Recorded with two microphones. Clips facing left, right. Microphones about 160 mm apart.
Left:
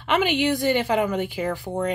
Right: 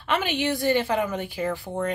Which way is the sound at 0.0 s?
15° left (ahead or behind).